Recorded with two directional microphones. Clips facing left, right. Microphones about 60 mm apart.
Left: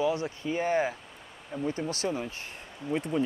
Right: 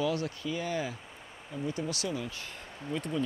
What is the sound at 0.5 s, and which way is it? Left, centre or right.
Speech, left.